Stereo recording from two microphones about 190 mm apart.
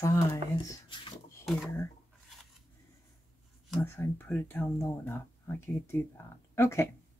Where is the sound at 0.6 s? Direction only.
25° left (ahead or behind).